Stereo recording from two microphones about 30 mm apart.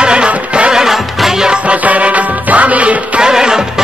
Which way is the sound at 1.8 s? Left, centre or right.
Right.